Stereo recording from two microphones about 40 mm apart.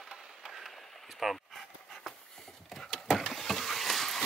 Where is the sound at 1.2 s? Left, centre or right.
Centre.